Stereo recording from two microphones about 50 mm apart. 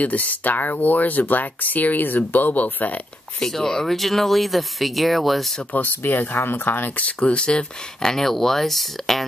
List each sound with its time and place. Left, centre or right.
0.0 s speech: left
3.4 s speech: centre
5.7 s speech: left
8.0 s speech: centre